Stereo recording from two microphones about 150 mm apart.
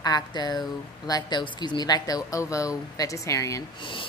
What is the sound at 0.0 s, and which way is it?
Speech, 25° left (ahead or behind).